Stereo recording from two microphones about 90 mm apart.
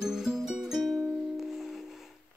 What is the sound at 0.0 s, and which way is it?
Music, 5° right (ahead or behind).